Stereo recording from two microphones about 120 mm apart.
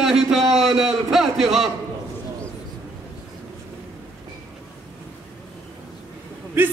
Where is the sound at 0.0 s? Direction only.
Centre (ahead or behind).